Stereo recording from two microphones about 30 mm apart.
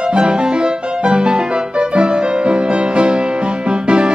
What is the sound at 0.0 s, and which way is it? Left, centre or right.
Music, right.